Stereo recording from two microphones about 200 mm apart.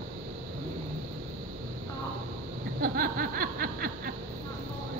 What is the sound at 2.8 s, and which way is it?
Snicker, 45° right (ahead or behind).